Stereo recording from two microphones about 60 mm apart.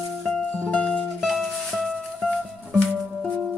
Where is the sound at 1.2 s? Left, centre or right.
Centre.